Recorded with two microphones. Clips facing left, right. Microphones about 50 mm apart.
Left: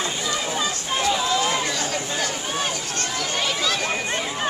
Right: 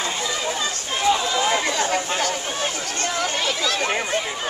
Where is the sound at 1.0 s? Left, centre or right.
Centre; by 2.2 s right.